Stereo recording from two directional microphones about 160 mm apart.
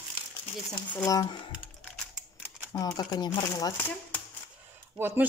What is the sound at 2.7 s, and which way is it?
Speech, 25° left (ahead or behind).